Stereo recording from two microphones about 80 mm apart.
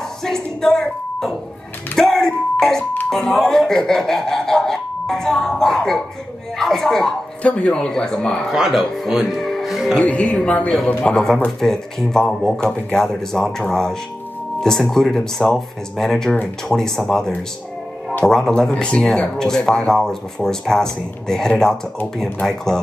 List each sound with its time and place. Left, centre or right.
0.2 s music: centre
2.0 s doorbell: centre
3.1 s speech: centre
8.5 s speech: centre
10.0 s speech: centre